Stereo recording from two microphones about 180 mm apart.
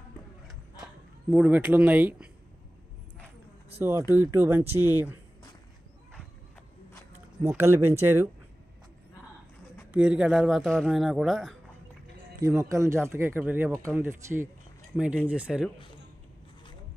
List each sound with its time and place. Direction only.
1.3 s speech: 10° right (ahead or behind)
4.1 s speech: 15° right (ahead or behind)
7.4 s speech: 15° right (ahead or behind)
9.8 s speech: 5° right (ahead or behind)
12.4 s speech: 20° right (ahead or behind)